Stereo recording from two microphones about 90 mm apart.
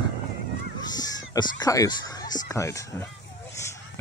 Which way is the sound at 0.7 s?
50° left (ahead or behind).